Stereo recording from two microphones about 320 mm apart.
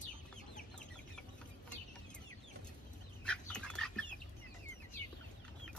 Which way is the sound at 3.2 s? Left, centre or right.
Centre.